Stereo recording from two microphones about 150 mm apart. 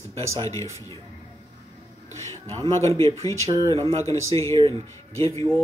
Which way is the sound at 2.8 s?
20° left (ahead or behind).